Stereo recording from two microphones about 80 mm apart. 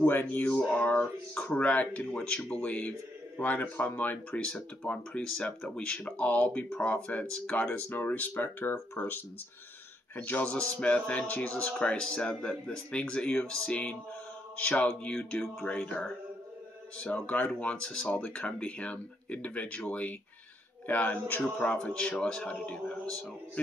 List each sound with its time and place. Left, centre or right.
0.0 s speech: left